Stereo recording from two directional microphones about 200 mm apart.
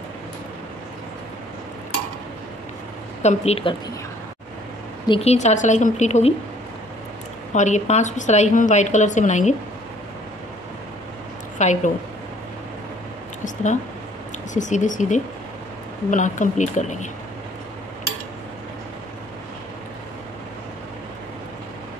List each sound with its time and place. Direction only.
3.2 s a woman's voice: 35° left (ahead or behind)
5.0 s a woman's voice: 30° left (ahead or behind)
7.5 s a woman's voice: 35° left (ahead or behind)
11.5 s a woman's voice: 35° left (ahead or behind)
14.5 s a woman's voice: 40° left (ahead or behind)